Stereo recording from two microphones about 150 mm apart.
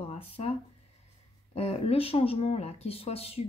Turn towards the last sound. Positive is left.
turn(degrees=40)  # may be behind; listen again after turning